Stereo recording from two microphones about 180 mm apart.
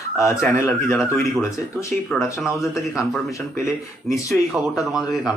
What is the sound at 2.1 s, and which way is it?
Speech, centre (ahead or behind).